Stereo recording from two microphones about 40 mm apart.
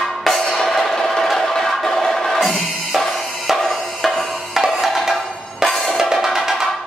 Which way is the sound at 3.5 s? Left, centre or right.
Centre.